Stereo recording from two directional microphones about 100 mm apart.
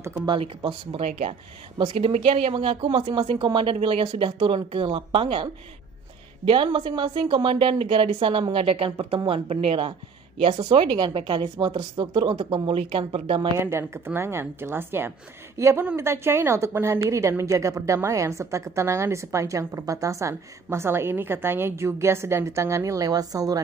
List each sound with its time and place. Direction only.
0.3 s speech: 55° right (ahead or behind); by 2.5 s 85° right
2.5 s speech: 65° right (ahead or behind)
13.6 s a woman's voice: 25° right (ahead or behind)